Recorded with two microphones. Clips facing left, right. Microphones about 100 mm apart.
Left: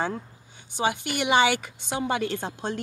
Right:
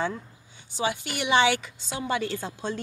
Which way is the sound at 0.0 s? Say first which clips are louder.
Left 1 dB; 50° left (ahead or behind).